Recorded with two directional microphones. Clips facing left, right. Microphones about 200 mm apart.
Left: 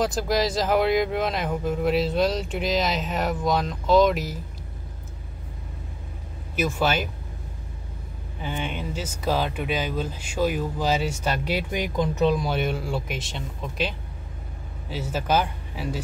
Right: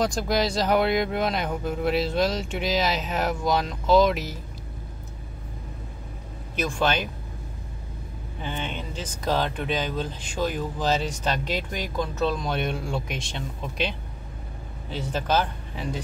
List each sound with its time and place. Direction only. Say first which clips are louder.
0.0 s speech: left 1 dB; centre (ahead or behind)
6.5 s speech: left 1 dB; 5° left (ahead or behind)
8.4 s speech: left 2 dB; 10° left (ahead or behind)